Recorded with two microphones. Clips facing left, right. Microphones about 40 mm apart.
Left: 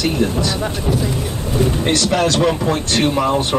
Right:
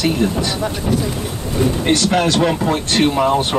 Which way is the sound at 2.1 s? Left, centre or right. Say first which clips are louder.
Even; right.